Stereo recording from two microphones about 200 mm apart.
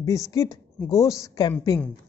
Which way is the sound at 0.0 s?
15° left (ahead or behind).